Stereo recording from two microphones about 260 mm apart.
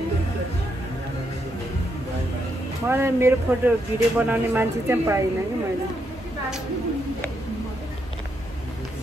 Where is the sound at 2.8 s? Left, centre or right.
Centre.